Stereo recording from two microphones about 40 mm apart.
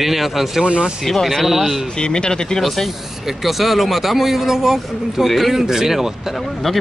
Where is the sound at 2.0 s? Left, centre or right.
Left.